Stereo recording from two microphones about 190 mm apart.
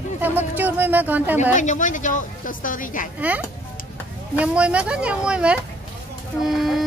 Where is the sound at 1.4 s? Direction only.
40° left (ahead or behind).